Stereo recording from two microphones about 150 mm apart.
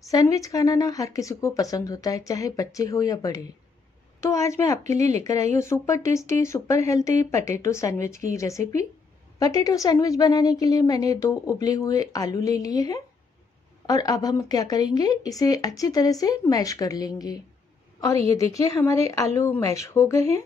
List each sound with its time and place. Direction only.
0.0 s a woman's voice: 20° left (ahead or behind)
4.9 s speech: 50° right (ahead or behind)
5.2 s a woman's voice: 20° left (ahead or behind)